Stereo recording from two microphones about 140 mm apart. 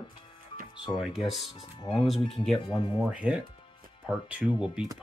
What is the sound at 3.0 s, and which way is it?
Speech, 10° right (ahead or behind).